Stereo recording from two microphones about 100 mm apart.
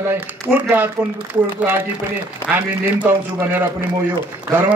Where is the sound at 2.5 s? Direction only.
20° right (ahead or behind).